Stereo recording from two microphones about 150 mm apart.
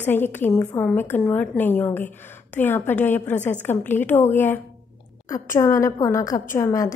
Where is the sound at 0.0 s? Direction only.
15° left (ahead or behind).